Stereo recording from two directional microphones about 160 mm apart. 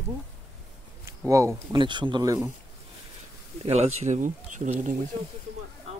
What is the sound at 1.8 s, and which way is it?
Speech, 30° right (ahead or behind).